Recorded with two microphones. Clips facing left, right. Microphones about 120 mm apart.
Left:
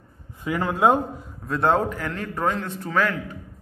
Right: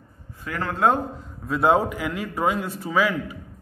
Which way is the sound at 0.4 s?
15° left (ahead or behind).